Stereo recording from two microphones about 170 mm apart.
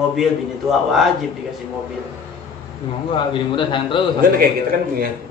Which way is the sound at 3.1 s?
30° left (ahead or behind).